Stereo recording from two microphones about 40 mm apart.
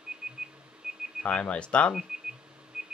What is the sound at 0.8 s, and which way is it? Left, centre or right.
Radio, right.